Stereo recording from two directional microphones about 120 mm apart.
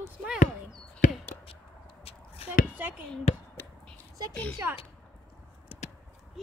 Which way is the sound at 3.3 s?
65° left (ahead or behind).